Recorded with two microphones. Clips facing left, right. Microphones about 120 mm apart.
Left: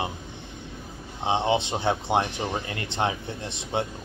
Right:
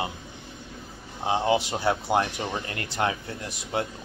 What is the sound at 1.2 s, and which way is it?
Speech, 20° left (ahead or behind).